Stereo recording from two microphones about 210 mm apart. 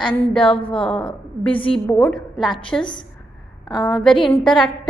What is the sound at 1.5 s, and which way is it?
Speech, 25° left (ahead or behind).